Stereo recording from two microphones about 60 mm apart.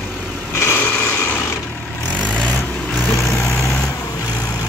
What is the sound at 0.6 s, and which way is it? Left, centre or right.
Vehicle, left.